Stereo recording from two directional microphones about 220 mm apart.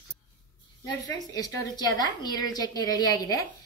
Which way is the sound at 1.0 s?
15° left (ahead or behind).